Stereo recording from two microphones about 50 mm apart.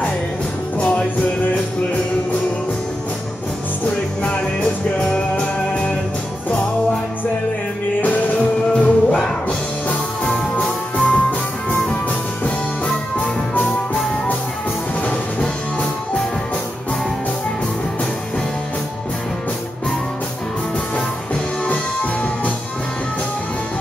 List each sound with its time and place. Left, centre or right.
0.7 s music: left
5.1 s music: left
8.7 s music: centre
10.2 s music: centre